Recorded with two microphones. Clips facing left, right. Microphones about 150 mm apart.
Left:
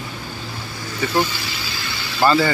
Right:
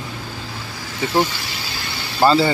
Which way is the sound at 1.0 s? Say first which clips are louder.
Right 1 dB; 25° right (ahead or behind).